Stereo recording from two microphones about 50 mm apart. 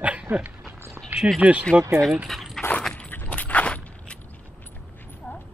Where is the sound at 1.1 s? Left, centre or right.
Right.